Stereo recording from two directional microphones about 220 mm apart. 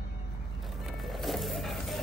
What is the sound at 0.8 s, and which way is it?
Music, centre (ahead or behind).